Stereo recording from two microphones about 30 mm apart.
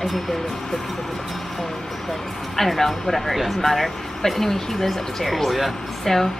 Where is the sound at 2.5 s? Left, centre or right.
Centre.